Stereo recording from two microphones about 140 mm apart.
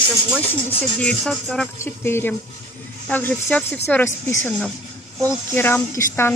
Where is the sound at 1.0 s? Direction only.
5° left (ahead or behind).